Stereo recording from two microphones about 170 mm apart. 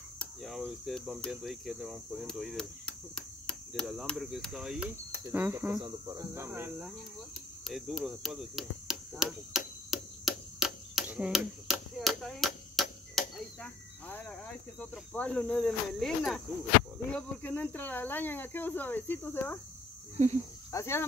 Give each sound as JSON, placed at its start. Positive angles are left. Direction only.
{"t": 0.2, "sound": "speech", "side_deg": 0}
{"t": 5.1, "sound": "cricket", "side_deg": -15}
{"t": 5.8, "sound": "speech", "side_deg": -20}
{"t": 7.6, "sound": "a sound", "side_deg": 0}
{"t": 13.1, "sound": "speech", "side_deg": 10}
{"t": 20.7, "sound": "speech", "side_deg": 15}